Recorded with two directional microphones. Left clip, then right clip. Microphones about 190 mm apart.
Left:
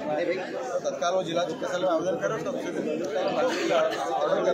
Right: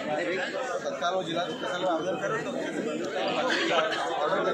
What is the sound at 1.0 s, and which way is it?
A man's voice, 10° left (ahead or behind).